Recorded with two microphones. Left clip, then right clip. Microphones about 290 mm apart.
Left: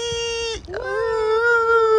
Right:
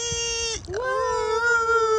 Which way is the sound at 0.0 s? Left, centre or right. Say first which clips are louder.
Left 3 dB; centre.